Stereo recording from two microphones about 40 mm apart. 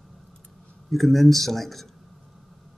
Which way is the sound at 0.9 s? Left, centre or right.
Centre.